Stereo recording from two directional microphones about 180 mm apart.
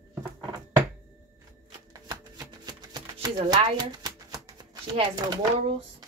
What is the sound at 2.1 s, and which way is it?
Shuffling cards, 20° right (ahead or behind).